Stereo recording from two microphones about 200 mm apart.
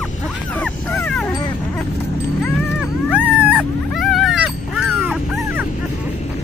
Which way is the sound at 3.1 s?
5° right (ahead or behind).